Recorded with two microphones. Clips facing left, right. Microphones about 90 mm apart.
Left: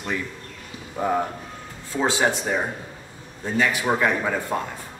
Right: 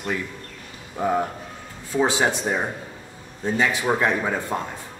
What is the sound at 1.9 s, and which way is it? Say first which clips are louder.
A man's voice: right 1 dB; 15° right (ahead or behind).